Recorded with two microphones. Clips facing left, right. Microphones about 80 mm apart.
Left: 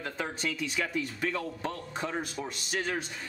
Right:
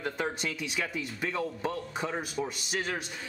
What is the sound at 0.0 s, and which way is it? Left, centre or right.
A man's voice, centre.